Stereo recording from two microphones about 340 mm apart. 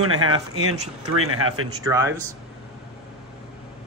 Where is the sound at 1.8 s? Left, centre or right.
Centre.